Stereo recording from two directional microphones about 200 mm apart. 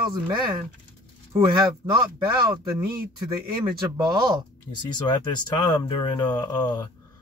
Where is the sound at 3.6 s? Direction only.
20° right (ahead or behind).